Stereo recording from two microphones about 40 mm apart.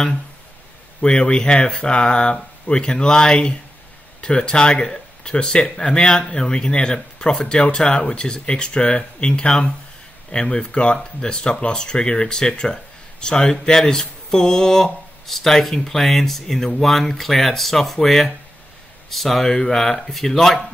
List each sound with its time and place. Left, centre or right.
1.0 s speech: left; by 20.6 s centre